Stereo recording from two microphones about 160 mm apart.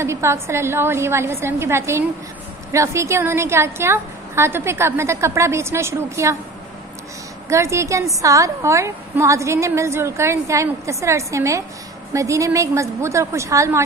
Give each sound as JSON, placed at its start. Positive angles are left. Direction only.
{"t": 0.0, "sound": "a woman's voice", "side_deg": -15}
{"t": 7.4, "sound": "a woman's voice", "side_deg": -20}